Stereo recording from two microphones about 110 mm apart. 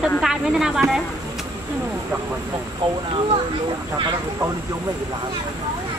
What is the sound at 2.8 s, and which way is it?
Speech, 50° right (ahead or behind).